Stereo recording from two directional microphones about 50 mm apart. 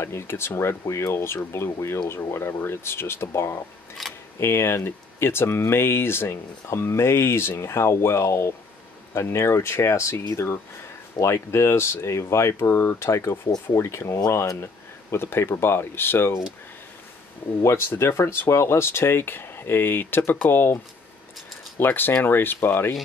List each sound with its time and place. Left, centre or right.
0.0 s speech: left
4.0 s speech: centre
4.4 s speech: left
10.1 s speech: left
11.1 s speech: left
17.6 s speech: left